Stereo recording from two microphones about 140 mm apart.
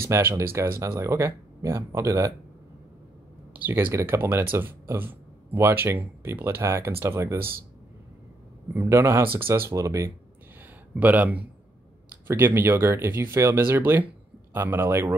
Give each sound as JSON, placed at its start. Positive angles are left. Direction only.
{"t": 0.0, "sound": "speech", "side_deg": -20}
{"t": 3.5, "sound": "speech", "side_deg": -15}
{"t": 8.7, "sound": "speech", "side_deg": -15}